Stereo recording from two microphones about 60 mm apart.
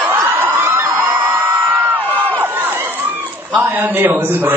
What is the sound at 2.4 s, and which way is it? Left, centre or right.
Run, right.